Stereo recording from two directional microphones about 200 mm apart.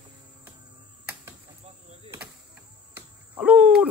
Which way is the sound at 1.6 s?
30° right (ahead or behind).